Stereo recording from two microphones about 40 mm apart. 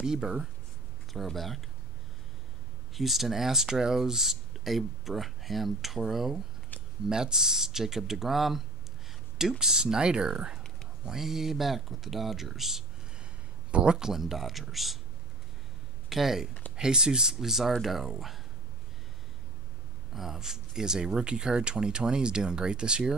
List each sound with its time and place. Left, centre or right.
0.0 s speech: centre
1.1 s speech: centre
2.9 s speech: centre
13.7 s speech: right
13.9 s speech: centre
16.1 s speech: centre
16.7 s speech: centre
20.2 s speech: centre